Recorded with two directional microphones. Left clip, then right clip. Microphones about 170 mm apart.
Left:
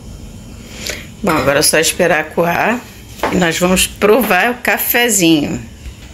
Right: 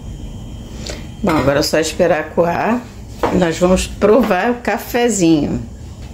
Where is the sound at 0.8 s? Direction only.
Centre (ahead or behind).